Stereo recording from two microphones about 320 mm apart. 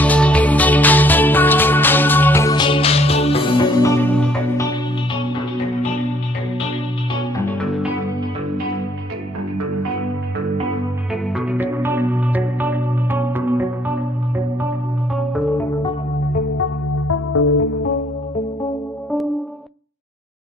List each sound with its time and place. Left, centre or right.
0.0 s music: centre
7.3 s music: centre
11.3 s music: centre
15.1 s music: centre
16.3 s music: left